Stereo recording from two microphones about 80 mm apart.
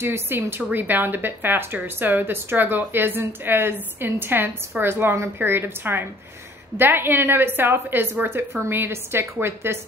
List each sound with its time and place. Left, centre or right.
0.0 s speech: right